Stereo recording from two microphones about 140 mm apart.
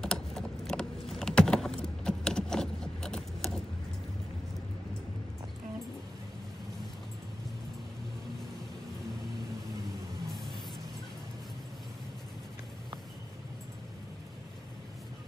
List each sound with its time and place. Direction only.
0.0 s typing: 5° left (ahead or behind)